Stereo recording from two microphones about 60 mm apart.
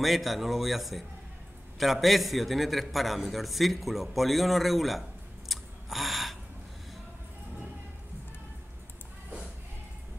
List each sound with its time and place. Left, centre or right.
0.0 s a man's voice: centre
5.5 s gasp: centre